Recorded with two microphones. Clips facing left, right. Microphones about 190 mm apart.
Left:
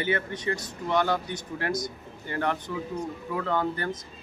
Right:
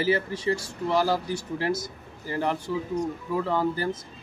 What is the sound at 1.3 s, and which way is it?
Speech, 30° right (ahead or behind).